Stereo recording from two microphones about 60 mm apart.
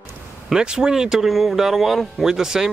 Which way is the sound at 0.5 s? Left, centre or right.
Centre.